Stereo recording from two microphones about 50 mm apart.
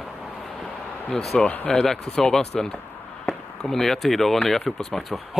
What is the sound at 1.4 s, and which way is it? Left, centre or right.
Speech, left.